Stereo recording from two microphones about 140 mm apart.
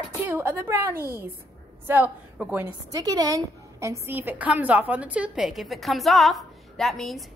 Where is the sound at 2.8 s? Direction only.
25° right (ahead or behind); by 7.2 s centre (ahead or behind).